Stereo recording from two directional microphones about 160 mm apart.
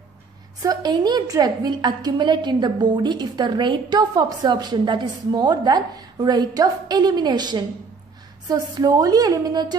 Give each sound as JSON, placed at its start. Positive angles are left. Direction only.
{"t": 0.6, "sound": "a woman's voice", "side_deg": -25}